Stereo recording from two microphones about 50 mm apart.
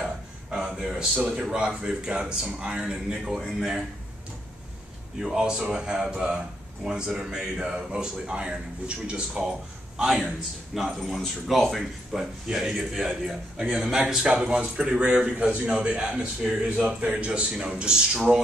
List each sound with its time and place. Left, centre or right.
0.0 s a sound: centre
1.7 s speech: centre
5.2 s speech: centre
10.1 s a man's voice: centre; by 17.3 s right
17.3 s speech: centre